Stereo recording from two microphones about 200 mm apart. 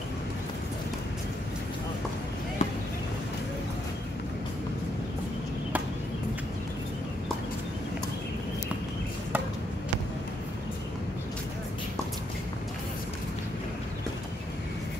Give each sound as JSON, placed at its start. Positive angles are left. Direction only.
{"t": 2.6, "sound": "basketball bounce", "side_deg": 35}